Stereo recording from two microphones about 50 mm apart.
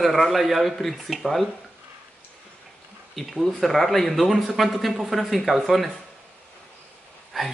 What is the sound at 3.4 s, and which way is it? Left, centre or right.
A man's voice, centre.